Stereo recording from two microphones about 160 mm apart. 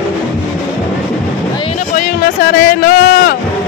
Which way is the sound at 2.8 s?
90° left.